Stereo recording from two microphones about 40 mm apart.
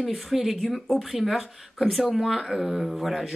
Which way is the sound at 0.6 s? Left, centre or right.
Centre.